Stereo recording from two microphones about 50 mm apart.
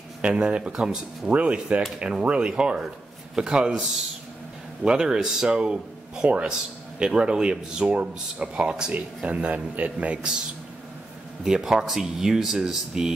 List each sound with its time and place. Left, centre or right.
0.2 s speech: right
4.8 s speech: centre
11.4 s speech: centre